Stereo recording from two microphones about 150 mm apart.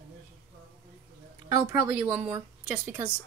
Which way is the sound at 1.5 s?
15° right (ahead or behind).